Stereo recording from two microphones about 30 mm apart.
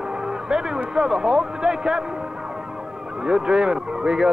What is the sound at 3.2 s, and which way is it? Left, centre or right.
Speech, right.